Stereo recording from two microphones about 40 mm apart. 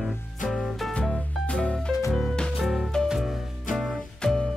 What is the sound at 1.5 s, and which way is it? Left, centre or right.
Music, left.